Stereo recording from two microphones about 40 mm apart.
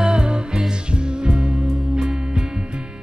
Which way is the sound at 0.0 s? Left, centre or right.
Right.